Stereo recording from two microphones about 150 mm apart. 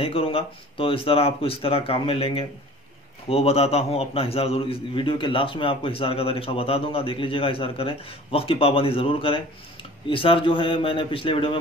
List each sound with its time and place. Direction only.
0.0 s a man's voice: 40° left (ahead or behind)